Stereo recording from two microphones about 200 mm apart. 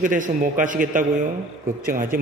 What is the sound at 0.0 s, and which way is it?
A man's voice, 40° right (ahead or behind).